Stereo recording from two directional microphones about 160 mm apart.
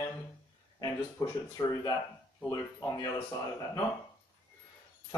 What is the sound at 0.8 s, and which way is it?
Speech, 20° left (ahead or behind).